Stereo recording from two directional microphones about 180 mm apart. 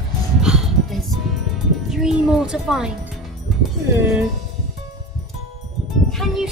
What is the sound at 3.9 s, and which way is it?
Speech, 15° right (ahead or behind).